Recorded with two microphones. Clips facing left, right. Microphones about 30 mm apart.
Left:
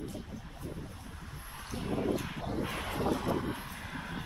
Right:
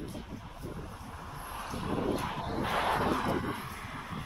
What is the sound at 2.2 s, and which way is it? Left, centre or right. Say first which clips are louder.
Vehicle: right 4 dB; right.